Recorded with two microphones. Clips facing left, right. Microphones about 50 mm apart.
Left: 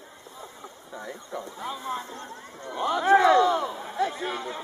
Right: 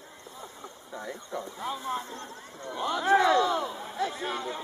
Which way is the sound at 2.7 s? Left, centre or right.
Left.